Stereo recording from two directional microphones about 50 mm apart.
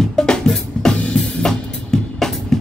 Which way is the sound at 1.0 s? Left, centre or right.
Centre.